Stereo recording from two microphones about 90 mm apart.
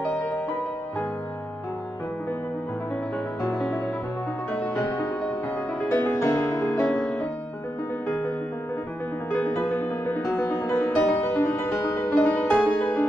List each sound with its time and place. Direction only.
5.8 s music: 25° left (ahead or behind)
6.6 s music: 15° left (ahead or behind)
9.5 s music: 30° left (ahead or behind)
12.2 s music: 20° left (ahead or behind)